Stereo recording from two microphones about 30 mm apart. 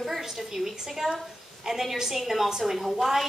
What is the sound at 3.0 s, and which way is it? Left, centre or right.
Speech, centre.